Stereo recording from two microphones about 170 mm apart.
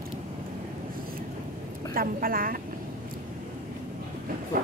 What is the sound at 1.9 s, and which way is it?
Speech, 60° right (ahead or behind).